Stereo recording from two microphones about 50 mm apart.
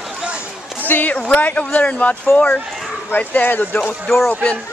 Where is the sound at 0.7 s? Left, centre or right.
Left.